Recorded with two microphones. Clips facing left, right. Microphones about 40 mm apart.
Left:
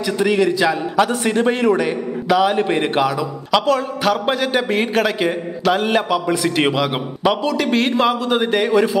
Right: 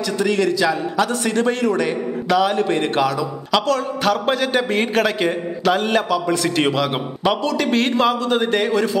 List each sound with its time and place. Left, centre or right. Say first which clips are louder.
0.2 s a man's voice: left 2 dB; centre